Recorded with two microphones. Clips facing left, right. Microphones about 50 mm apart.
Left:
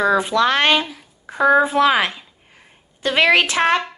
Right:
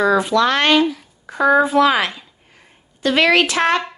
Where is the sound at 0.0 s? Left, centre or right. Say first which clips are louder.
Right 1 dB; centre.